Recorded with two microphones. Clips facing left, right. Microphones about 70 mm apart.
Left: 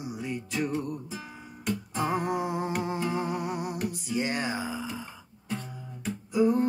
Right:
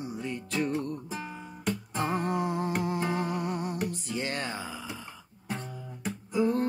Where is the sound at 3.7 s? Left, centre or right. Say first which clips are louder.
Left 2 dB; centre.